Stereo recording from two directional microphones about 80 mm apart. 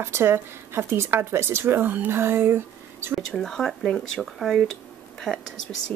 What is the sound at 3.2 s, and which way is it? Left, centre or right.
Speech, centre.